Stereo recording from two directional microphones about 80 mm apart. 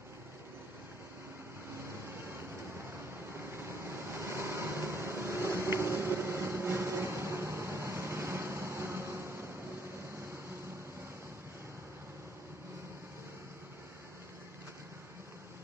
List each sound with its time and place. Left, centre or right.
1.8 s vehicle: right